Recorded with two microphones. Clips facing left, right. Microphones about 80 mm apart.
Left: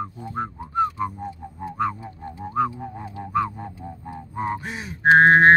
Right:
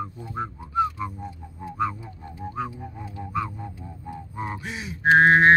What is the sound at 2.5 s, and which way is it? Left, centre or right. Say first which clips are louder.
Music: left 9 dB; left.